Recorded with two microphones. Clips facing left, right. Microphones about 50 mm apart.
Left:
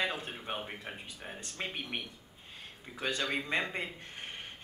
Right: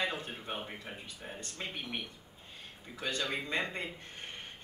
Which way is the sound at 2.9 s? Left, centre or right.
Centre.